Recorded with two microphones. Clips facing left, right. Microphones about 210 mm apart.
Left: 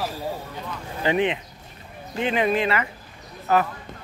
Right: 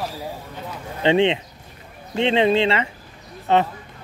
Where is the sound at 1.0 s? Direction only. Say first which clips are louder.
Right 5 dB; 25° right (ahead or behind).